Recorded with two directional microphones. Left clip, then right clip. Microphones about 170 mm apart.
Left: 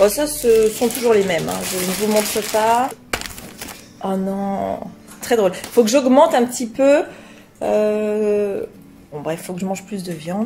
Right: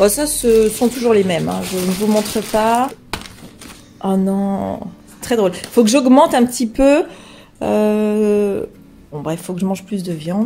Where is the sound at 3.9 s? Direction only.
20° right (ahead or behind).